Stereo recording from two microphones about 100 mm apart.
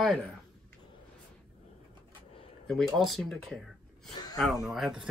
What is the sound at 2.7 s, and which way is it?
Speech, centre (ahead or behind).